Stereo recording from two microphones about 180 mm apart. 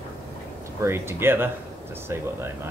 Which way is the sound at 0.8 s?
15° right (ahead or behind).